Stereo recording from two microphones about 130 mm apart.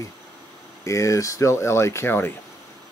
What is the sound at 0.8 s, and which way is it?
Speech, 25° left (ahead or behind).